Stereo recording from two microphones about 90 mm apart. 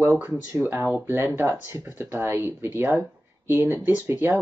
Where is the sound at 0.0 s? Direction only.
25° right (ahead or behind).